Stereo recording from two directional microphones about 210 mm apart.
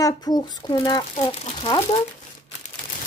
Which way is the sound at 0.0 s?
20° left (ahead or behind).